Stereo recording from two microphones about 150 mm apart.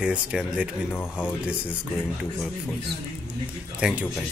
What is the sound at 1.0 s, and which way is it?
Speech, 15° left (ahead or behind).